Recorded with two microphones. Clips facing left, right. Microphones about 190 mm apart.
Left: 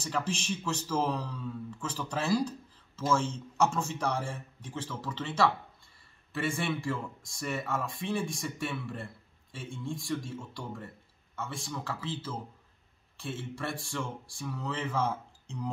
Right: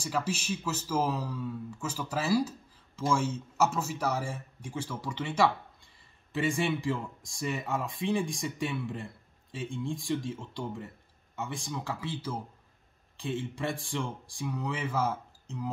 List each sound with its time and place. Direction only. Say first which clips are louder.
0.0 s speech: right 1 dB; 10° right (ahead or behind)